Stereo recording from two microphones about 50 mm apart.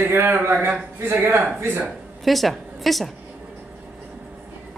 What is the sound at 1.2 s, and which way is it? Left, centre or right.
Speech, right.